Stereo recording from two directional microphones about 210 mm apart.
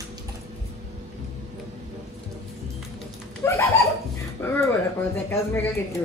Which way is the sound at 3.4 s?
15° left (ahead or behind).